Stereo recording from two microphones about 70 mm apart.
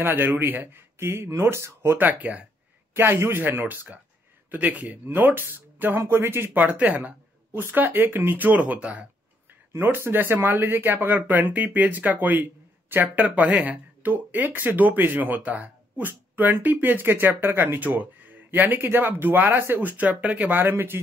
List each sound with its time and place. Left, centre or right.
0.0 s speech: right
6.9 s speech: centre
7.5 s speech: right
9.7 s speech: right